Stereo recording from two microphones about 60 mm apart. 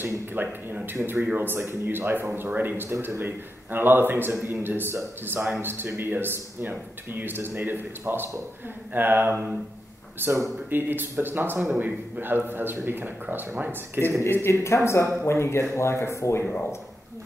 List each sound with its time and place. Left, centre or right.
0.3 s speech: right
14.2 s speech: left